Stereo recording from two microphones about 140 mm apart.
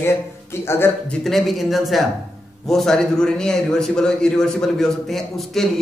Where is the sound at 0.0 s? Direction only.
15° left (ahead or behind).